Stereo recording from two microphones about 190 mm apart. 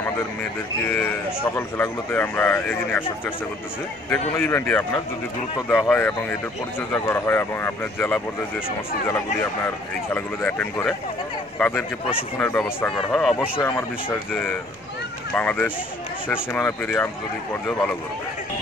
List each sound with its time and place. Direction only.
0.0 s speech: 10° left (ahead or behind)
4.4 s speech: 10° left (ahead or behind)
10.1 s speech: 10° left (ahead or behind)
13.6 s speech: 20° left (ahead or behind)
15.3 s speech: 10° left (ahead or behind)